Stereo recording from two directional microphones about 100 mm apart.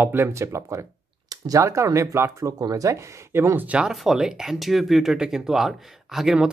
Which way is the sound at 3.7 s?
10° right (ahead or behind).